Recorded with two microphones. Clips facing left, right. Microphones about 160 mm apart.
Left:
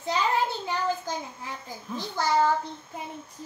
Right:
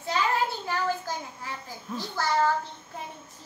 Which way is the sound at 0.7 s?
20° left (ahead or behind).